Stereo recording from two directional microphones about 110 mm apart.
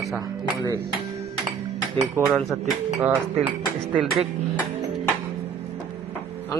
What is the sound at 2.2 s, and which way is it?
Speech, 25° right (ahead or behind).